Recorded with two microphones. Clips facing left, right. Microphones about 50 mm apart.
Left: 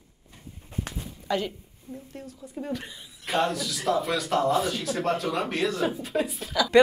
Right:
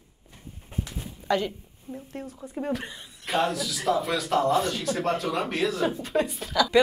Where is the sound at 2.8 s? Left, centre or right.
Centre.